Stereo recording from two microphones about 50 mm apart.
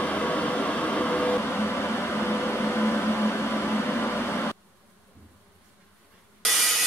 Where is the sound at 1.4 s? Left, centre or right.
Left.